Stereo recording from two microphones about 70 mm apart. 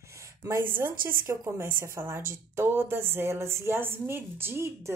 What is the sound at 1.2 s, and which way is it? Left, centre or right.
Speech, right.